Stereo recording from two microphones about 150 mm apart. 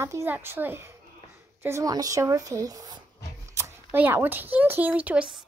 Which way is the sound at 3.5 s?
15° right (ahead or behind).